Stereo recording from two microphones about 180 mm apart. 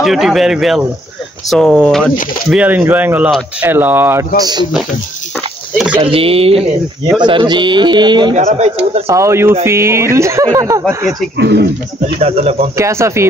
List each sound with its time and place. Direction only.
0.0 s speech: centre (ahead or behind)
2.5 s speech: 10° right (ahead or behind)
4.4 s speech: 25° right (ahead or behind)
5.9 s speech: 30° right (ahead or behind)
8.4 s speech: 35° right (ahead or behind)
9.0 s speech: 15° right (ahead or behind)
11.3 s speech: 70° right (ahead or behind)
12.2 s speech: 35° right (ahead or behind)
12.7 s speech: 15° right (ahead or behind)